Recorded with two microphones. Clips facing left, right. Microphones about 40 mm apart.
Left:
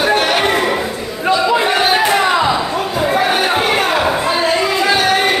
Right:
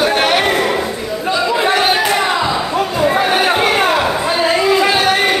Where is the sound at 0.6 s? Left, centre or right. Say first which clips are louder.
Right 1 dB; centre.